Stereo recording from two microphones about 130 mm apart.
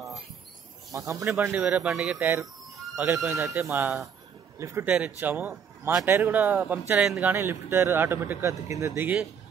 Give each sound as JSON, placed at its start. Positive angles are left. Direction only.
{"t": 0.9, "sound": "a man's voice", "side_deg": -25}
{"t": 1.3, "sound": "a man's voice", "side_deg": -15}
{"t": 4.8, "sound": "a man's voice", "side_deg": -10}
{"t": 7.3, "sound": "a man's voice", "side_deg": -20}